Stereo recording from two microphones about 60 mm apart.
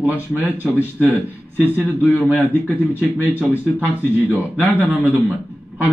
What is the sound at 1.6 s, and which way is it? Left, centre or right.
Speech, left.